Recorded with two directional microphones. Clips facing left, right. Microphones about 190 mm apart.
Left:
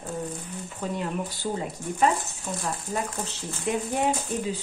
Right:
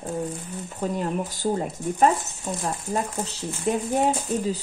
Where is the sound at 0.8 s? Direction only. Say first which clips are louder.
Right 4 dB; 45° right (ahead or behind).